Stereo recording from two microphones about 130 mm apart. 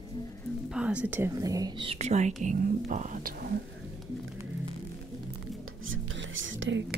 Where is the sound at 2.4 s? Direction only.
80° right.